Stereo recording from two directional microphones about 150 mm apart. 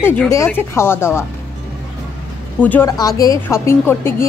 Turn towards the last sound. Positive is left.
turn(degrees=15)  # may be behind; listen again after turning